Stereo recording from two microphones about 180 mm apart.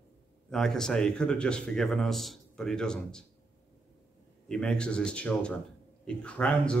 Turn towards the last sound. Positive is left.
turn(degrees=5)  # may be behind; listen again after turning